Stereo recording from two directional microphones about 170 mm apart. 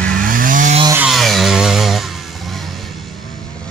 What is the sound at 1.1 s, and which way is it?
Chainsaw, centre (ahead or behind).